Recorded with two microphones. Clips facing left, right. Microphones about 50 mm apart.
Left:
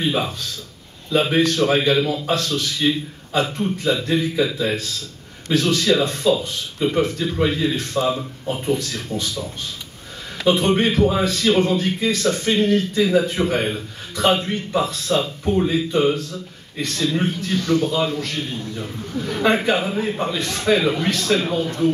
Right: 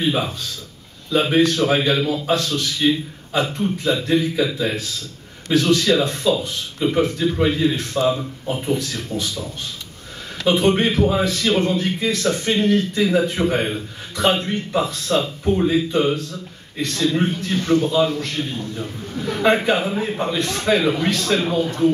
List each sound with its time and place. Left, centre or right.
0.0 s a man's voice: centre
10.4 s a man's voice: centre
17.6 s a man's voice: right
18.8 s a man's voice: centre